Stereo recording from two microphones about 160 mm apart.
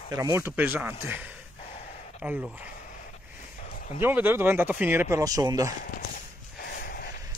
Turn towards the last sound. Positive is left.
turn(degrees=70)  # may be behind; listen again after turning